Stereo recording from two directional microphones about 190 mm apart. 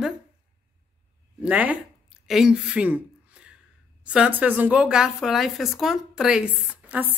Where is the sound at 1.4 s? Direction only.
10° right (ahead or behind).